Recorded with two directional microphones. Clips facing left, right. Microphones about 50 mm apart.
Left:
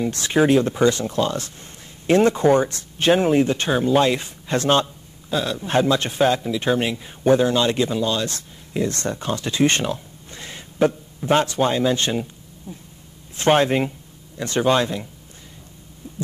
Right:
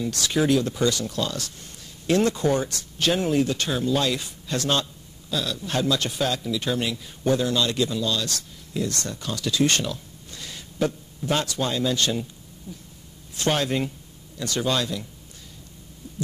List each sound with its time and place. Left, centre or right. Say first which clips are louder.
0.0 s speech: left 5 dB; left